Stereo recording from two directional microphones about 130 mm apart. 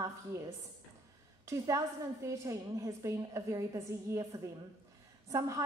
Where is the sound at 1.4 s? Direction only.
25° right (ahead or behind).